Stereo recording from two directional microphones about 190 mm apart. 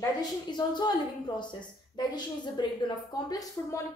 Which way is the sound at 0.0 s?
20° left (ahead or behind).